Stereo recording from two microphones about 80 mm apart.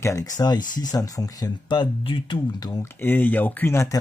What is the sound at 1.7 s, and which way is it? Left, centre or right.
Speech, left.